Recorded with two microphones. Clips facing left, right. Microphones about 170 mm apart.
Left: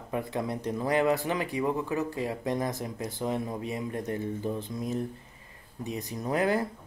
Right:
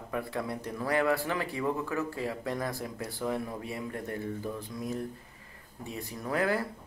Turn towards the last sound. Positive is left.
turn(degrees=20)  # may be behind; listen again after turning